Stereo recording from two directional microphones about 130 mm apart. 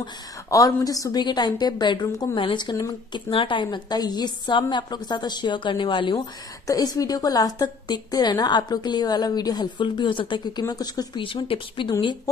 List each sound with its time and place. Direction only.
0.0 s a woman's voice: 25° left (ahead or behind)
3.3 s a woman's voice: 40° left (ahead or behind)
6.7 s a woman's voice: 30° left (ahead or behind)